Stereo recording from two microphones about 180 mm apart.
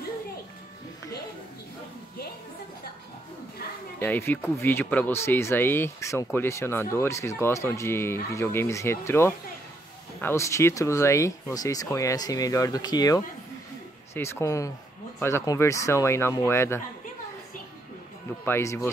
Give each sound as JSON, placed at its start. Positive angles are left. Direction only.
{"t": 4.0, "sound": "speech", "side_deg": 10}
{"t": 18.4, "sound": "speech", "side_deg": 15}